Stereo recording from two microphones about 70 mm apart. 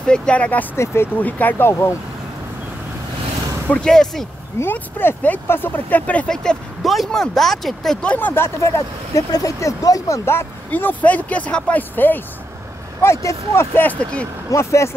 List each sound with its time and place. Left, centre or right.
0.0 s speech: centre
0.7 s speech: left
1.2 s speech: left
1.7 s speech: left
3.8 s speech: centre
4.7 s speech: left
6.3 s speech: centre
8.0 s speech: left
8.6 s speech: left
10.7 s speech: left
13.0 s speech: left
13.7 s speech: left
14.5 s speech: left